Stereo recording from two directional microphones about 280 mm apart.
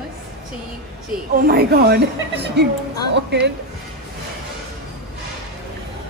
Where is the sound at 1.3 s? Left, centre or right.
Right.